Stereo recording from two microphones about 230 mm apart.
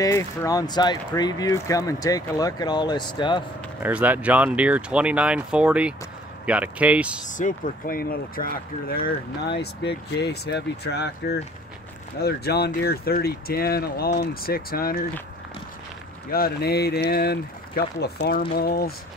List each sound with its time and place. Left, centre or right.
0.0 s speech: centre
3.8 s speech: centre
7.2 s speech: left
16.3 s speech: left